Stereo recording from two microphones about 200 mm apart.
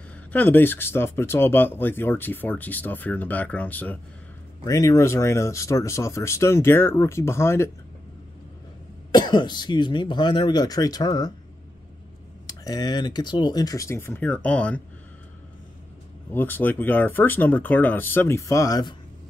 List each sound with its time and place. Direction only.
0.3 s speech: 10° left (ahead or behind)
9.1 s speech: 20° left (ahead or behind)
12.4 s speech: 20° left (ahead or behind)
16.3 s speech: 10° left (ahead or behind)